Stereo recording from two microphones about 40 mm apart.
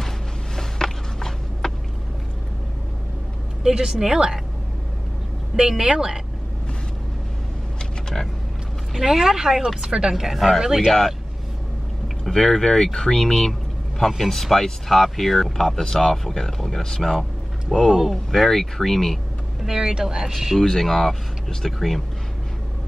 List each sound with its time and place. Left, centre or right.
0.6 s a sound: centre
3.6 s speech: centre
5.6 s speech: centre
9.1 s speech: centre
10.6 s speech: centre
10.9 s speech: centre
12.3 s speech: centre
15.5 s speech: centre
19.6 s speech: centre
20.2 s speech: centre
20.6 s speech: centre